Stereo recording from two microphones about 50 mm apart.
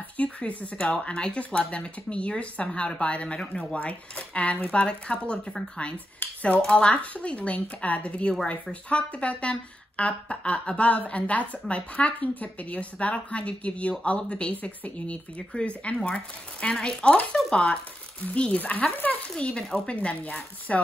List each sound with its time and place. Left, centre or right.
0.2 s speech: left
6.7 s speech: left
18.9 s speech: left
19.3 s speech: centre